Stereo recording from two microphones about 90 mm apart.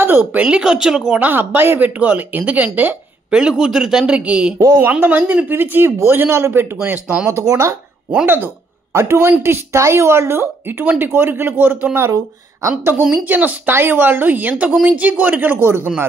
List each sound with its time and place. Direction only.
0.0 s speech: 20° right (ahead or behind)
1.2 s speech: 20° right (ahead or behind)
3.3 s speech: 5° right (ahead or behind)
4.6 s speech: 30° right (ahead or behind)
5.0 s speech: 20° right (ahead or behind)
6.8 s speech: 15° right (ahead or behind)
7.2 s speech: 35° right (ahead or behind)
8.9 s speech: 30° right (ahead or behind)